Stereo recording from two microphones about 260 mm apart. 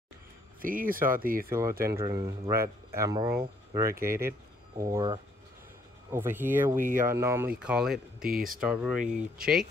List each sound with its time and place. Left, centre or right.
0.6 s speech: right
1.5 s speech: centre
3.9 s speech: right
4.7 s speech: centre
6.8 s speech: right
7.1 s speech: centre